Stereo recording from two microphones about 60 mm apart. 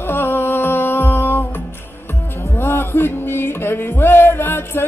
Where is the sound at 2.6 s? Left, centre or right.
Left.